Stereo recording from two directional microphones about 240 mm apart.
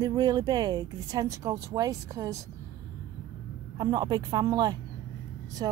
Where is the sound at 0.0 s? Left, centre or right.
Centre.